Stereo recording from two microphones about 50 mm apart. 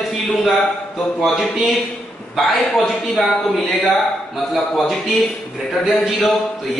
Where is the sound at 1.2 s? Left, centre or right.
Centre.